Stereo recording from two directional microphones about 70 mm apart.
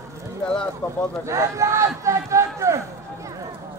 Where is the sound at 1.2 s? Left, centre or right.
Right.